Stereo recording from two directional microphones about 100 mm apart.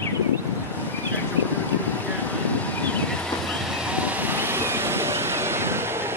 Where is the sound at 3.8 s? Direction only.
15° right (ahead or behind).